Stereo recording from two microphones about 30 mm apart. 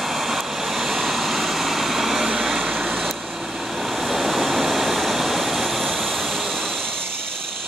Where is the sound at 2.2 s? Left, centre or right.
Centre.